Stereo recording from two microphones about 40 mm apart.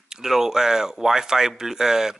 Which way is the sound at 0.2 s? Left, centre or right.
Centre.